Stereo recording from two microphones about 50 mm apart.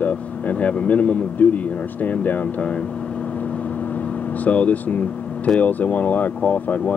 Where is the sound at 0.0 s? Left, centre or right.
Left.